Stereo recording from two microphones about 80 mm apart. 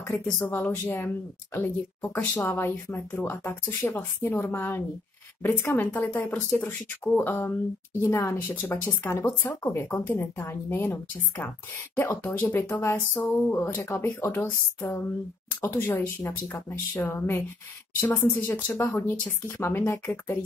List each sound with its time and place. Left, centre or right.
0.2 s speech: left
8.4 s speech: left